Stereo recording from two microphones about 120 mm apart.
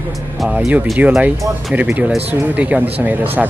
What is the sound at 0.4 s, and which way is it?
Speech, 5° right (ahead or behind).